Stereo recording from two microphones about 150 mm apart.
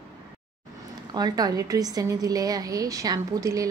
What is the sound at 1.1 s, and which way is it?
A woman's voice, 25° right (ahead or behind).